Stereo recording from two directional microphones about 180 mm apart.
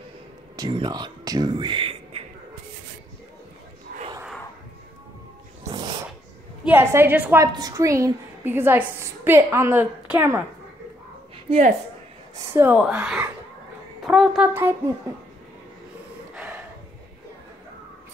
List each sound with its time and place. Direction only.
0.6 s speech: 25° right (ahead or behind)
3.9 s battle cry: 50° right (ahead or behind)
6.6 s a woman's voice: 10° right (ahead or behind)
11.3 s a sound: 40° right (ahead or behind)
12.5 s a woman's voice: 10° right (ahead or behind)